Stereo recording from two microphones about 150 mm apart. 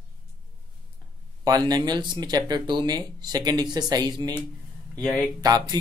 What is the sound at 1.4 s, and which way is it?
Speech, 25° right (ahead or behind).